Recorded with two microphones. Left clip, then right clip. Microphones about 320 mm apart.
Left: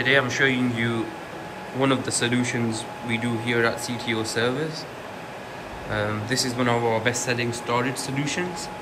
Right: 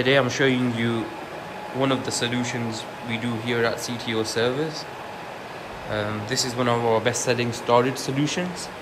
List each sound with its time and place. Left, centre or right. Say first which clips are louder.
0.0 s speech: even; centre
5.9 s speech: left 1 dB; centre